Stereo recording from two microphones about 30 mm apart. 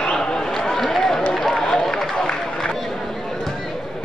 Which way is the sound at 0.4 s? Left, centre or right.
Centre.